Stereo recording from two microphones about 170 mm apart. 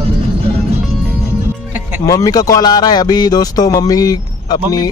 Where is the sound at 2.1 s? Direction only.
20° left (ahead or behind).